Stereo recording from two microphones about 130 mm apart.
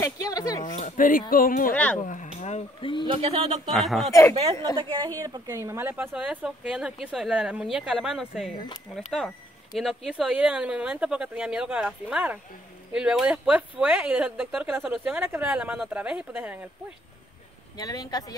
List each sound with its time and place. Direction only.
0.0 s a sound: 25° left (ahead or behind)
0.7 s speech: 80° left
1.7 s speech: 10° left (ahead or behind)
2.8 s a man's voice: 40° left (ahead or behind)
3.1 s speech: 50° right (ahead or behind)
3.7 s speech: centre (ahead or behind)
4.1 s a woman's voice: 25° left (ahead or behind)
4.7 s a woman's voice: 40° right (ahead or behind)
5.2 s speech: 25° right (ahead or behind)
17.7 s a woman's voice: 30° left (ahead or behind)